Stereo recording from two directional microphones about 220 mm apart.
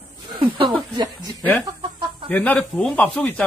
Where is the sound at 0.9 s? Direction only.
20° right (ahead or behind).